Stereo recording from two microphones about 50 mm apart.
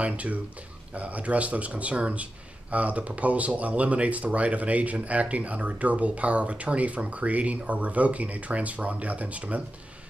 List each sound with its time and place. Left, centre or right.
0.0 s speech: right